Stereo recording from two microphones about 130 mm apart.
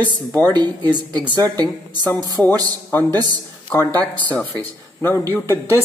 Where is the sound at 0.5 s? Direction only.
35° right (ahead or behind).